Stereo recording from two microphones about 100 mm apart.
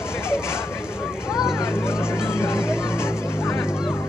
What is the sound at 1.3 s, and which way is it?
Vehicle, 5° right (ahead or behind).